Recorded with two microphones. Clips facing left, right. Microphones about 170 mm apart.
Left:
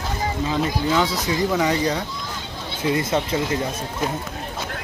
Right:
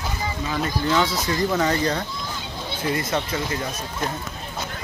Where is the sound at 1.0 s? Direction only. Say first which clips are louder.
Left 1 dB; 15° left (ahead or behind).